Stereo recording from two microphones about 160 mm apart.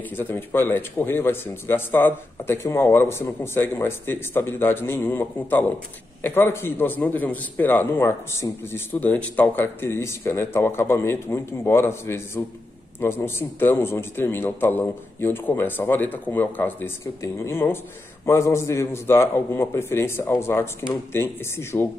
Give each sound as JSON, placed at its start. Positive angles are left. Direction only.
{"t": 0.1, "sound": "a man's voice", "side_deg": 15}